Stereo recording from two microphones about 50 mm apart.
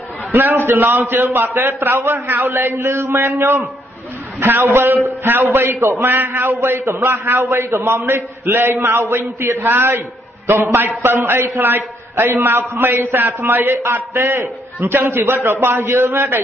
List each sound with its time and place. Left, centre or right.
0.3 s a man's voice: right
4.4 s a man's voice: right
5.7 s a man's voice: right
6.1 s a man's voice: right
12.9 s a man's voice: right
13.2 s a man's voice: right